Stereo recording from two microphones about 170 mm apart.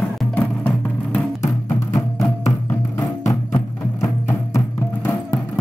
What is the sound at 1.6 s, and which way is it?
Music, 20° left (ahead or behind).